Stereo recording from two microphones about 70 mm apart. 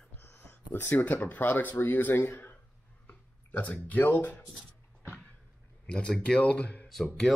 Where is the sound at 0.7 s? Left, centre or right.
Left.